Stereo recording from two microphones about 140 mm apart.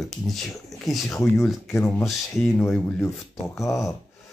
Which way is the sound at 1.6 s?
20° left (ahead or behind).